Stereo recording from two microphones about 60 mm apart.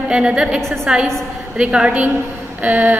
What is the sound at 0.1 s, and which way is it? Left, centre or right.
A woman's voice, centre.